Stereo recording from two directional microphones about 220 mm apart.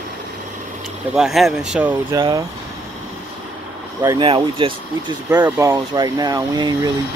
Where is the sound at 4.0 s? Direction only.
20° right (ahead or behind).